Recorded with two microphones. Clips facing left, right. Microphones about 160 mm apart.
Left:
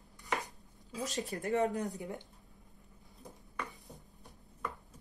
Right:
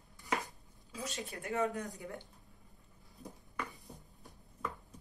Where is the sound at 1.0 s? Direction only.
40° left (ahead or behind).